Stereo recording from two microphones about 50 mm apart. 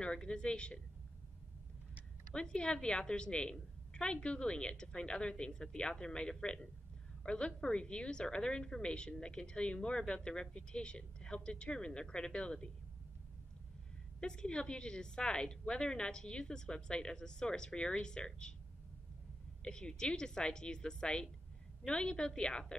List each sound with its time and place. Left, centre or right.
0.0 s a woman's voice: centre
2.3 s a woman's voice: centre
14.2 s a woman's voice: centre
19.6 s a woman's voice: centre